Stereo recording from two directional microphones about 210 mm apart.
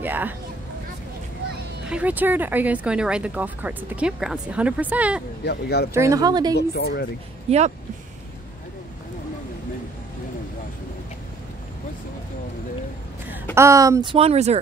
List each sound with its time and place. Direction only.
0.0 s speech: 10° right (ahead or behind)
1.9 s speech: 5° right (ahead or behind)
5.4 s speech: 50° left (ahead or behind)
5.9 s speech: 15° right (ahead or behind)
6.5 s speech: 50° left (ahead or behind)
13.6 s speech: 15° right (ahead or behind)
14.1 s speech: 30° right (ahead or behind)